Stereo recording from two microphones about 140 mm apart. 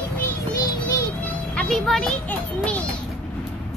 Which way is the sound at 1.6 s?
5° left (ahead or behind).